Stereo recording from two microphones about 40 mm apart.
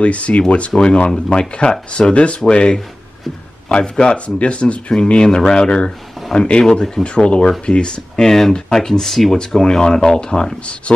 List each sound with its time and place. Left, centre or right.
0.0 s speech: left
1.4 s speech: centre
2.0 s speech: left
5.2 s speech: centre
6.6 s speech: centre
7.0 s speech: left
8.3 s speech: centre